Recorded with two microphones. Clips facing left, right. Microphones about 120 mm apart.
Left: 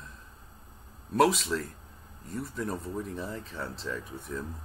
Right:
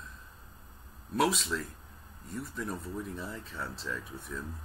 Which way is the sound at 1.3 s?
Centre (ahead or behind).